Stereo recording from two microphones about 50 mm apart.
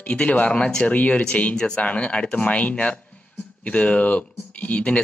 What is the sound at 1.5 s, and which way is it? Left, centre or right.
Speech, centre.